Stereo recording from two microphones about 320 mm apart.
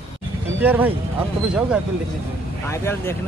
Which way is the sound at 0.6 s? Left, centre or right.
Centre.